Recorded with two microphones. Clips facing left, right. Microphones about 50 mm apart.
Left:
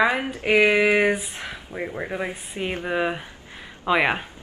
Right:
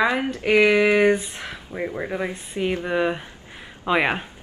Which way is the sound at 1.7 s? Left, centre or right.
Centre.